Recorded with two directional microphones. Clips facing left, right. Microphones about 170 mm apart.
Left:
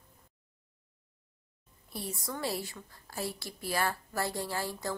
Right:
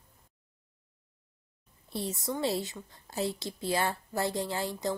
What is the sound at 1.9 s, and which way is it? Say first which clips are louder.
A woman's voice: right 5 dB; 25° right (ahead or behind).